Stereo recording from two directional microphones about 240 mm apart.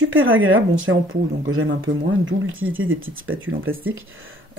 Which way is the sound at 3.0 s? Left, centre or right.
Right.